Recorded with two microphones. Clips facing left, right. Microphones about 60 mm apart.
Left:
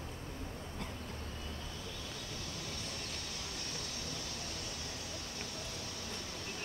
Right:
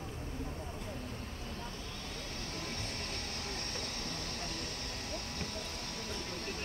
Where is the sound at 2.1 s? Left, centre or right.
Right.